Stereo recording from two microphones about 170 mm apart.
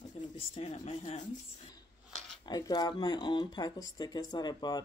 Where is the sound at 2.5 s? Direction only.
25° left (ahead or behind).